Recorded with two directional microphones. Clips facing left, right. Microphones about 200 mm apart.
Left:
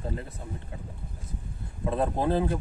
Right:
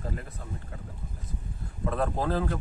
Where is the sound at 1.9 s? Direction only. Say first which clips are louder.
Left 2 dB; 20° left (ahead or behind).